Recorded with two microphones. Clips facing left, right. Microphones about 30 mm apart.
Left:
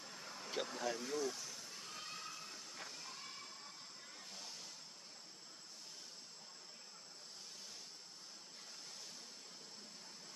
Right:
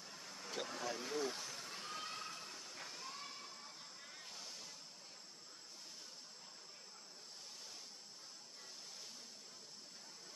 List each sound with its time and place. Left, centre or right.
0.0 s vehicle: centre
0.7 s speech: centre
0.9 s speech: centre
1.2 s vehicle: right
2.0 s a sound: centre
2.4 s a sound: centre
4.3 s vehicle: centre